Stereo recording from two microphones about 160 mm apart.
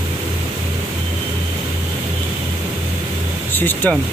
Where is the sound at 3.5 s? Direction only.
10° left (ahead or behind).